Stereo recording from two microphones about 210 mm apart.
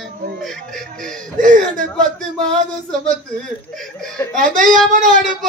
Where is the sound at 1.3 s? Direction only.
40° right (ahead or behind).